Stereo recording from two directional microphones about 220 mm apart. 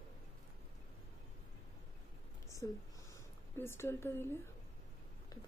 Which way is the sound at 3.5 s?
10° left (ahead or behind).